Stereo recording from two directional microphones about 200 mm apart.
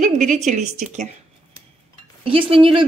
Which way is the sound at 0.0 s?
40° right (ahead or behind).